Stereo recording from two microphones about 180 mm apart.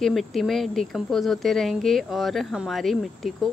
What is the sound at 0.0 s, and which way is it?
Speech, centre (ahead or behind).